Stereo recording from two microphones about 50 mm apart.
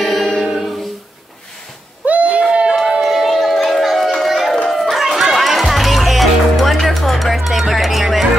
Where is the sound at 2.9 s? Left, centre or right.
Centre.